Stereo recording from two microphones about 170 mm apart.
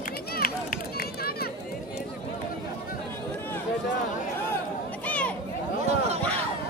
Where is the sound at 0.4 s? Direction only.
60° left (ahead or behind).